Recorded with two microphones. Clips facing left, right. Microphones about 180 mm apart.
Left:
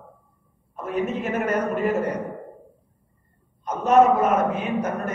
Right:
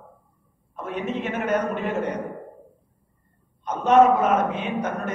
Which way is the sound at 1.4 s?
10° left (ahead or behind).